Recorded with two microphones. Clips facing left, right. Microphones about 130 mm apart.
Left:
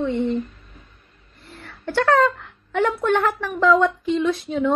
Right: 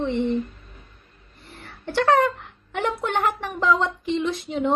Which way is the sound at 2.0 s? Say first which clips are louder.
Left 1 dB; 15° right (ahead or behind).